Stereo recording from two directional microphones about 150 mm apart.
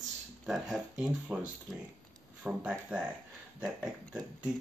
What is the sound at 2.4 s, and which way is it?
Speech, 5° right (ahead or behind).